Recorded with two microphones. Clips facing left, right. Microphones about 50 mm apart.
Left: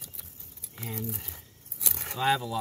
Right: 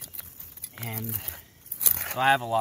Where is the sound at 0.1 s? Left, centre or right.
Right.